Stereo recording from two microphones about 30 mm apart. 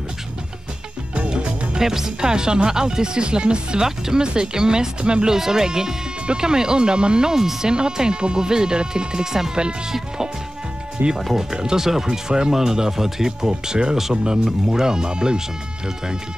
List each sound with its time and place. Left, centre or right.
1.1 s music: right
1.8 s speech: centre
3.8 s speech: centre
4.2 s speech: right
5.3 s speech: centre
7.3 s speech: centre
7.7 s speech: right
11.3 s speech: right